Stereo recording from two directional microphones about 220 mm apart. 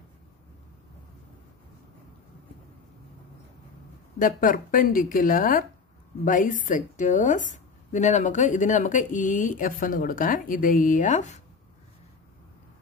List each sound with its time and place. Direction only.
4.2 s a woman's voice: 40° left (ahead or behind)